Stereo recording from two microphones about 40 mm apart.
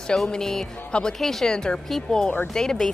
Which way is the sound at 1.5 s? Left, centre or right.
Centre.